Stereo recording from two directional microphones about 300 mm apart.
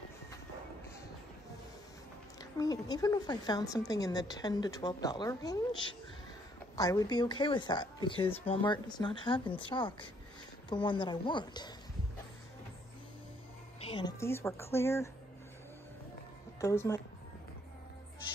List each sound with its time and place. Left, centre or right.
2.5 s a woman's voice: centre
13.8 s a woman's voice: centre
16.6 s a woman's voice: centre